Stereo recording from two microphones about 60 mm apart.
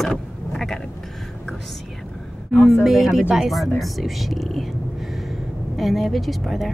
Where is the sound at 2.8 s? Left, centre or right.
Centre.